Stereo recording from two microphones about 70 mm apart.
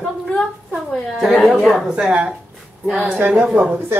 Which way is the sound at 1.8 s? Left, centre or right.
Centre.